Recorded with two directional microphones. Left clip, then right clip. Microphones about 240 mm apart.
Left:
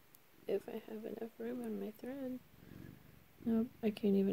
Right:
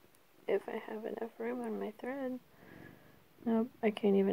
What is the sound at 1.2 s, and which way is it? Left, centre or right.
Speech, centre.